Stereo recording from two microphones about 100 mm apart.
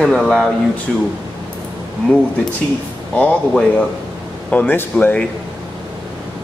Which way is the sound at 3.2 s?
10° left (ahead or behind).